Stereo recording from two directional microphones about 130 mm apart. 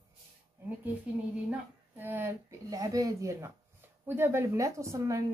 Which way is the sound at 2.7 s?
25° right (ahead or behind).